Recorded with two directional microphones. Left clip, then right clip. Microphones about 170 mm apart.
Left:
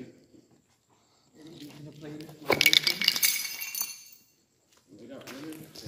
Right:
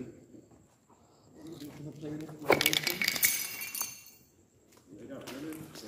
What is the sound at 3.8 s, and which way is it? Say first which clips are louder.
Chink: left 2 dB; 20° right (ahead or behind).